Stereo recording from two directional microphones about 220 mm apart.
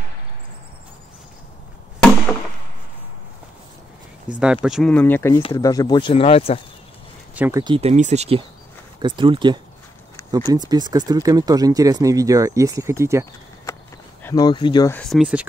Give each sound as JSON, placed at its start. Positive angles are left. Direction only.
{"t": 4.4, "sound": "speech", "side_deg": -5}
{"t": 7.3, "sound": "speech", "side_deg": -10}
{"t": 7.6, "sound": "speech", "side_deg": -25}
{"t": 14.2, "sound": "speech", "side_deg": 15}
{"t": 15.0, "sound": "speech", "side_deg": 0}